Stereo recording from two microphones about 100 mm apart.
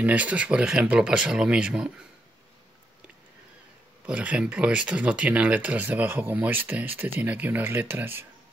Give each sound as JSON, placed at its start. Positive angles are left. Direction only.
{"t": 0.0, "sound": "speech", "side_deg": -15}
{"t": 4.0, "sound": "speech", "side_deg": -15}